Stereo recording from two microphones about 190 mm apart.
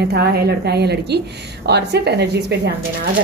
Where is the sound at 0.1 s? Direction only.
60° right (ahead or behind).